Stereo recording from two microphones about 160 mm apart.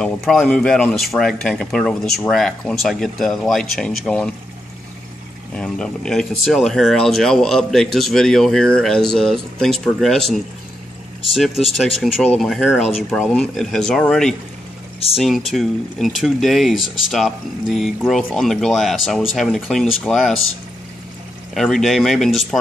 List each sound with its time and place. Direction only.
0.0 s speech: 5° left (ahead or behind)
5.5 s speech: 5° left (ahead or behind)
21.5 s speech: centre (ahead or behind)